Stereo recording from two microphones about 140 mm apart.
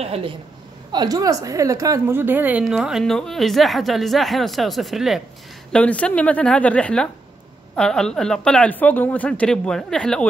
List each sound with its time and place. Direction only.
0.0 s a woman's voice: 45° right (ahead or behind)
0.9 s a woman's voice: 25° right (ahead or behind); by 5.2 s centre (ahead or behind)
5.7 s a woman's voice: 10° left (ahead or behind)